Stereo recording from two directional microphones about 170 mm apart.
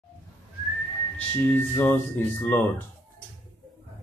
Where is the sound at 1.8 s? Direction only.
10° left (ahead or behind).